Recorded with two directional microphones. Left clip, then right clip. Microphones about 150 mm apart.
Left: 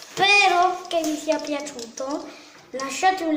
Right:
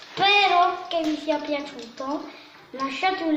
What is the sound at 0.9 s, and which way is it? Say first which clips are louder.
Speech: left 1 dB; 25° left (ahead or behind).